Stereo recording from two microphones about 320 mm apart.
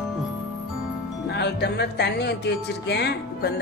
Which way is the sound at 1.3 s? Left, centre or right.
Left.